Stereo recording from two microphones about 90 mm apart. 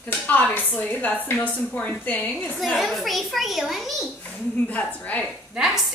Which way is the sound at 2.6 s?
Centre (ahead or behind).